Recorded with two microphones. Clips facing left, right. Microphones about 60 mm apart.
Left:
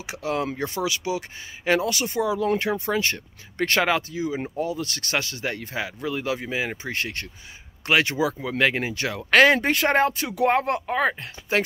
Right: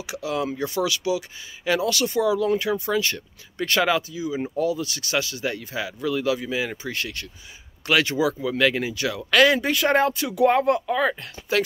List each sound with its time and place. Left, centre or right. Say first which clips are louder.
0.0 s speech: even; left